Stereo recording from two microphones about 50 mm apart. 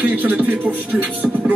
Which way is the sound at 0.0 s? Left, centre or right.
Right.